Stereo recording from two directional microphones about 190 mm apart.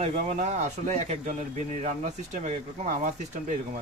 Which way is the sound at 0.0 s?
35° right (ahead or behind).